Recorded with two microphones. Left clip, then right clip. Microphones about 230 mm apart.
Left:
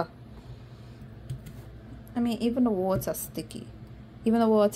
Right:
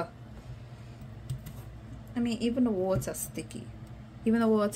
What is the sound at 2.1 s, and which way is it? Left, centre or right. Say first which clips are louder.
A woman's voice: left 3 dB; left.